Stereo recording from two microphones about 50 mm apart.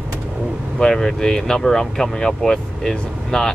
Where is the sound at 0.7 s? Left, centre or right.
Centre.